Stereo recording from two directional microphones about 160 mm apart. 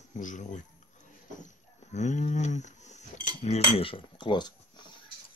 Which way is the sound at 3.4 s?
40° left (ahead or behind).